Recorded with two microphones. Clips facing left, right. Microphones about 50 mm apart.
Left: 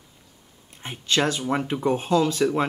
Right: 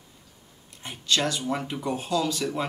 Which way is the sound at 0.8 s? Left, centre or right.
Left.